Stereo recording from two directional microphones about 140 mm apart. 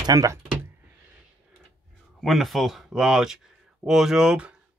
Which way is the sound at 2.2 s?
Centre (ahead or behind).